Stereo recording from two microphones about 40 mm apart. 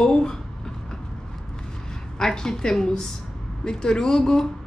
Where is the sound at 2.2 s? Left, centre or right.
Centre.